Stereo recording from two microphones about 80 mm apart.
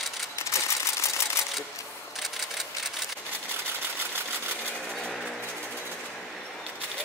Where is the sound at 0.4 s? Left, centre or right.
Left.